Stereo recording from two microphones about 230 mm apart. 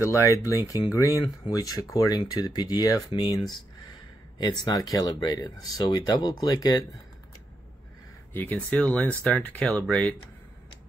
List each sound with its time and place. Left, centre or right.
0.0 s speech: centre
4.4 s speech: centre
8.3 s speech: centre